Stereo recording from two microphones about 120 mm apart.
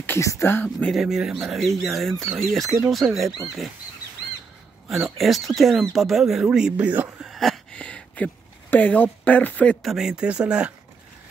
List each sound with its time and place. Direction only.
0.0 s speech: 20° left (ahead or behind)
0.9 s speech: 5° right (ahead or behind)
5.1 s speech: centre (ahead or behind)
7.2 s a sound: centre (ahead or behind)
9.8 s speech: 5° right (ahead or behind)